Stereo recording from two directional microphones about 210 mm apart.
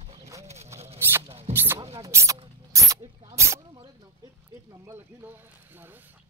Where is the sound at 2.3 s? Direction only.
15° right (ahead or behind).